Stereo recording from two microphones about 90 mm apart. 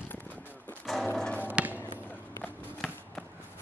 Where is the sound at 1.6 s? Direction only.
10° right (ahead or behind).